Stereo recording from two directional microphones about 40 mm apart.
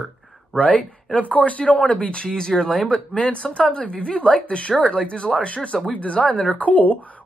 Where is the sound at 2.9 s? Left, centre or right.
Left.